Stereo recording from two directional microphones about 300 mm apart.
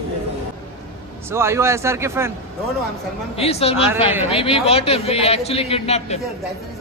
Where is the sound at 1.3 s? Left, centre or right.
Centre.